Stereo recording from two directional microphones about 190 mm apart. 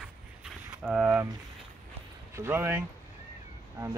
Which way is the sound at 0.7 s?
10° right (ahead or behind).